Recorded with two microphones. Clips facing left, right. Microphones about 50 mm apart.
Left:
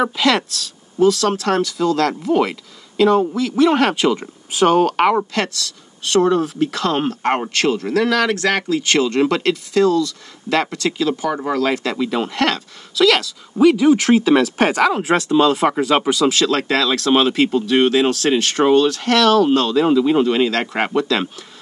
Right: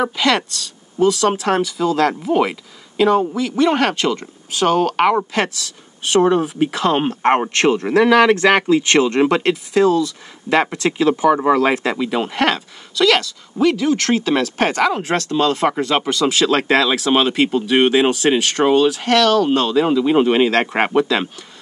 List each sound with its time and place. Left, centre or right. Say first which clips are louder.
0.0 s speech: even; centre
5.3 s speech: right 1 dB; centre
12.9 s speech: even; centre
16.4 s speech: right 2 dB; centre
16.9 s speech: left 1 dB; centre
18.4 s speech: left 2 dB; centre
19.1 s speech: left 1 dB; centre
20.1 s speech: right 2 dB; right